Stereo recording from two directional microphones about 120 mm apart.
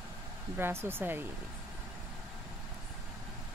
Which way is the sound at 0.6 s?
20° right (ahead or behind).